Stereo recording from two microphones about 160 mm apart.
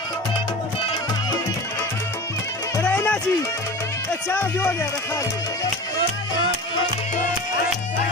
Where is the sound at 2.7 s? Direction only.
10° left (ahead or behind).